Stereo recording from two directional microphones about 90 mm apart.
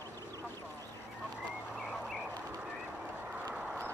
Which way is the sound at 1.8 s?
5° right (ahead or behind).